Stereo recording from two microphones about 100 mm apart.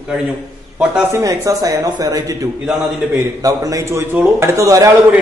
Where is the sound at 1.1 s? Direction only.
35° right (ahead or behind).